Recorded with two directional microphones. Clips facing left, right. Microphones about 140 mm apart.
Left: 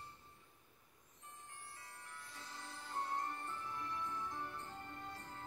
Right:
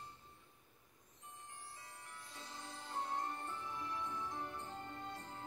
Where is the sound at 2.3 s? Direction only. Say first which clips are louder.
Right 2 dB; 15° right (ahead or behind).